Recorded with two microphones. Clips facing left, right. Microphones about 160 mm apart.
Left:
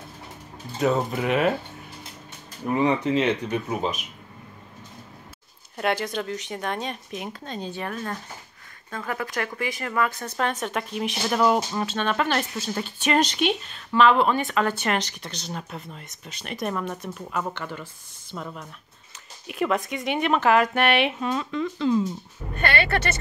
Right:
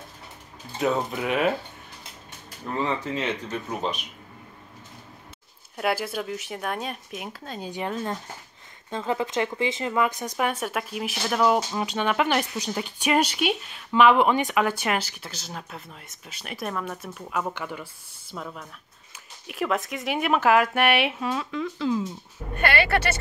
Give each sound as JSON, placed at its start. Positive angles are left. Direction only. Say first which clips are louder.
{"t": 0.7, "sound": "speech", "louder": "left 2 dB", "side_deg": 0}
{"t": 2.6, "sound": "speech", "louder": "left 6 dB", "side_deg": 15}
{"t": 5.8, "sound": "speech", "louder": "left 1 dB", "side_deg": -5}
{"t": 7.7, "sound": "speech", "louder": "right 6 dB", "side_deg": -20}
{"t": 11.8, "sound": "speech", "louder": "right 1 dB", "side_deg": -15}